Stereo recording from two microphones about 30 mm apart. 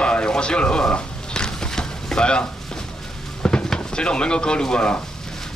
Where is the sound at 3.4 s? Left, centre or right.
Left.